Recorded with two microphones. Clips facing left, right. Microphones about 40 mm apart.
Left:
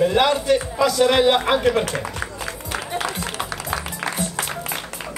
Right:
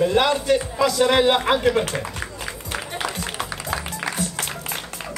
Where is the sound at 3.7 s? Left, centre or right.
Left.